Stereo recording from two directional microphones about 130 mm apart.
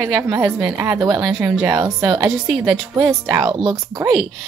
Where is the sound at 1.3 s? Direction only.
10° right (ahead or behind).